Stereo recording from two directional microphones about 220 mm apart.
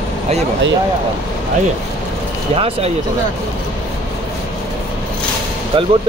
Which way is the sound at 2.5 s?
25° right (ahead or behind).